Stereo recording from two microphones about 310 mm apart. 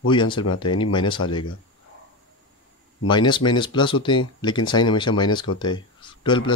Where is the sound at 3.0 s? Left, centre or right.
Centre.